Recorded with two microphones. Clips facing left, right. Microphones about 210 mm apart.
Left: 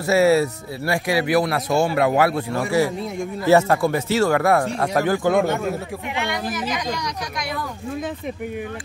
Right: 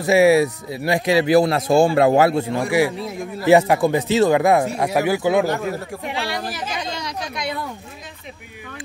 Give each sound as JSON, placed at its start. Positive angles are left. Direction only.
{"t": 0.0, "sound": "speech", "side_deg": -15}
{"t": 6.1, "sound": "speech", "side_deg": -30}